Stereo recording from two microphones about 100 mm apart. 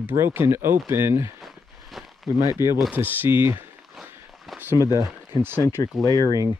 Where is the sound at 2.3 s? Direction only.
30° right (ahead or behind).